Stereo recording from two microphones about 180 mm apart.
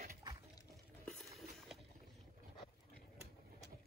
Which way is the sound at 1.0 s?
Centre (ahead or behind).